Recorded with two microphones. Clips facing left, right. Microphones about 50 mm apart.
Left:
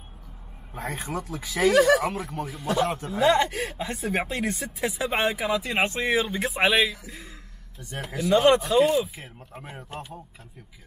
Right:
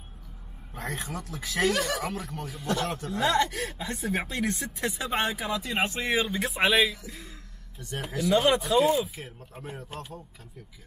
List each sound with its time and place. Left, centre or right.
0.7 s speech: centre